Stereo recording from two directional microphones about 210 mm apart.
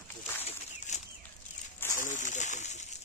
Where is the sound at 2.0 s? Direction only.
35° left (ahead or behind).